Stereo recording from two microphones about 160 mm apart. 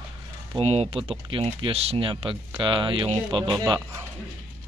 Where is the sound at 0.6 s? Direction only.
40° right (ahead or behind).